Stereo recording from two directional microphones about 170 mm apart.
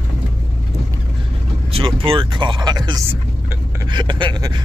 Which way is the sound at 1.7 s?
30° right (ahead or behind).